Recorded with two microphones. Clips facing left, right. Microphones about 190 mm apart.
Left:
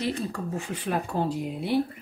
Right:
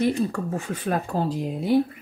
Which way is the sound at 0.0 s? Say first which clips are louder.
Right 6 dB; 45° right (ahead or behind).